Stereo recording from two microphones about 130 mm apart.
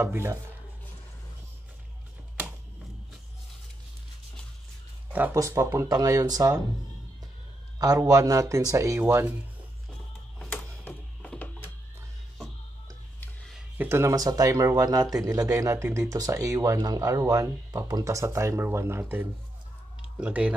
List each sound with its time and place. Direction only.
0.0 s speech: 20° right (ahead or behind)
5.3 s speech: 20° right (ahead or behind)
7.8 s speech: 30° right (ahead or behind)
10.8 s music: 10° left (ahead or behind)
13.6 s speech: 15° right (ahead or behind)